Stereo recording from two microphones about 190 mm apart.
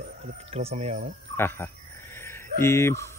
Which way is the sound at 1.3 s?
10° left (ahead or behind).